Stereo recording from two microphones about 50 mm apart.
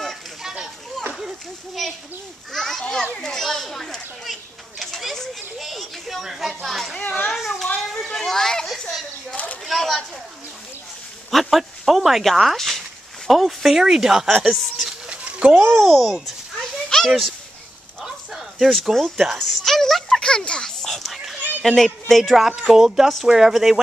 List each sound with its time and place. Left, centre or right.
0.4 s children playing: centre
1.8 s speech: centre
7.0 s a child's voice: left
7.3 s speech: centre
7.9 s speech: centre
11.2 s speech: centre
12.5 s a sound: centre
13.3 s speech: centre
15.0 s a sound: right
15.8 s speech: centre
16.9 s a sound: centre
18.0 s a sound: centre
21.6 s speech: centre
22.6 s speech: centre